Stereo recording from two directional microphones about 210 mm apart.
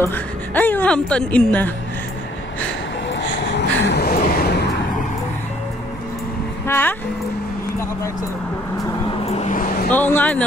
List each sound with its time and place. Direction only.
0.0 s a woman's voice: 10° left (ahead or behind)
3.1 s a sound: 55° left (ahead or behind)
6.7 s a woman's voice: 10° left (ahead or behind)
9.2 s vehicle: 35° left (ahead or behind)
9.9 s a woman's voice: 10° left (ahead or behind)